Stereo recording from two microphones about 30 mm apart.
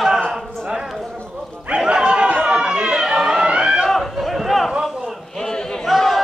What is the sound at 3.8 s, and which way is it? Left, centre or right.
Run, centre.